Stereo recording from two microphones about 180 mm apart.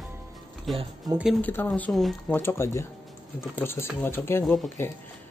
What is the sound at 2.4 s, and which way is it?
Speech, 15° left (ahead or behind).